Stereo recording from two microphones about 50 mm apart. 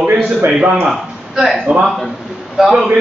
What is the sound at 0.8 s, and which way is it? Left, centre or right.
Speech, centre.